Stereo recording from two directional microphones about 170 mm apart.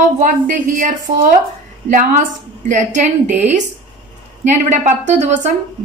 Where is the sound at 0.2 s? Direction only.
50° right (ahead or behind).